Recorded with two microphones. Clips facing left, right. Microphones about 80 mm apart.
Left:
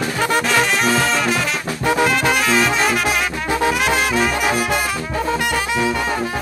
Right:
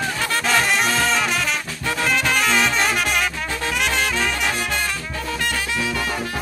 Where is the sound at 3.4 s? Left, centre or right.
Centre.